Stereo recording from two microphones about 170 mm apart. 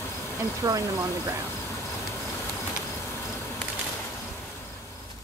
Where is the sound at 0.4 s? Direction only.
20° right (ahead or behind).